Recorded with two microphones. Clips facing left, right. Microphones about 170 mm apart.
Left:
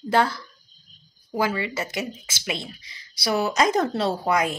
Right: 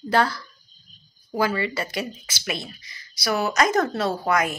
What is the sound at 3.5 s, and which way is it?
Speech, 30° left (ahead or behind).